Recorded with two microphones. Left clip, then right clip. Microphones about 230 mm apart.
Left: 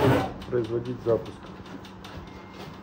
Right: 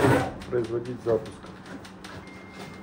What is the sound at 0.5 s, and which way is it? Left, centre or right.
Speech, centre.